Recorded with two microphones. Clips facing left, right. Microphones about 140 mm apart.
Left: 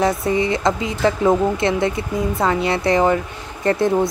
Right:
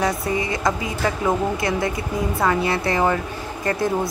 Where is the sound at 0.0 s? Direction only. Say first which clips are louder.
Left 4 dB; 25° left (ahead or behind).